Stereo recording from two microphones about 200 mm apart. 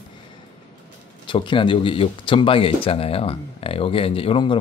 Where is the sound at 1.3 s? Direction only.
25° left (ahead or behind).